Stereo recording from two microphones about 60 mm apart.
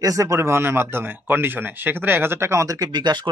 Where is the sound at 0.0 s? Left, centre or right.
Right.